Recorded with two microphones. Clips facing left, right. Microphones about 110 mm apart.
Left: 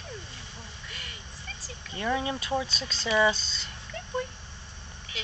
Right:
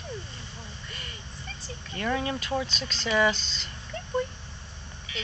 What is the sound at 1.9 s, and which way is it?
Speech, 15° left (ahead or behind).